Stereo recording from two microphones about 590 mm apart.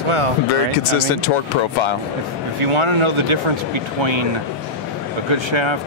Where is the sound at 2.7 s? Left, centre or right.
Right.